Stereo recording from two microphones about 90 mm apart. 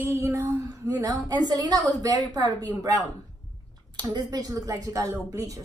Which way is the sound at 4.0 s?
50° right (ahead or behind).